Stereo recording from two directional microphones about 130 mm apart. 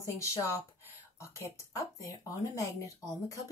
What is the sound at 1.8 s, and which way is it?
Speech, 25° left (ahead or behind).